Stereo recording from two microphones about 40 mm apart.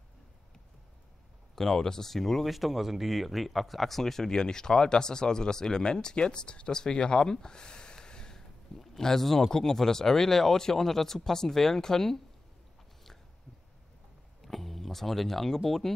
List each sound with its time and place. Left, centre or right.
1.5 s speech: centre
14.4 s speech: centre